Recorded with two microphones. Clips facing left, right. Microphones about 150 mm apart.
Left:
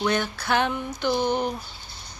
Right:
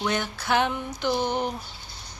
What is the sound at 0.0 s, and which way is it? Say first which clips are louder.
Speech: left 3 dB; 15° right (ahead or behind).